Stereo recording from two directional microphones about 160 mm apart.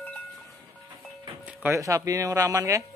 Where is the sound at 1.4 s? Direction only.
15° right (ahead or behind).